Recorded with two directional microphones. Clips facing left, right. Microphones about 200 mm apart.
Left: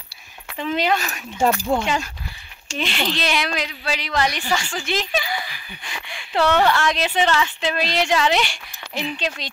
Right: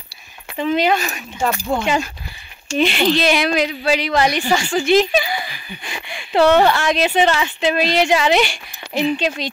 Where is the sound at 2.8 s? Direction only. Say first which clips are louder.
Right 8 dB; 10° right (ahead or behind).